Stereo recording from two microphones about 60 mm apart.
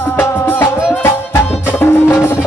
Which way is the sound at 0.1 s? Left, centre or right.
Left.